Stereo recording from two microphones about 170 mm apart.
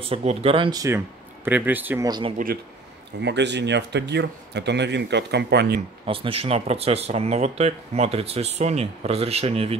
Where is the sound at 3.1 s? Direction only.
90° right; by 5.8 s 70° right (ahead or behind).